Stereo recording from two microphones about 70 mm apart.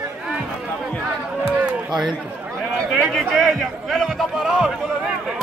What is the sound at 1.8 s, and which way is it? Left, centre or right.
Speech, centre.